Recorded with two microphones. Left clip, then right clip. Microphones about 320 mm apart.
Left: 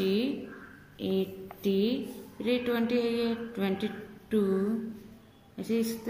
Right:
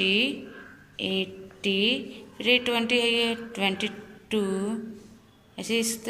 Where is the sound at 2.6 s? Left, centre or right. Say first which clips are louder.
Right 4 dB; centre.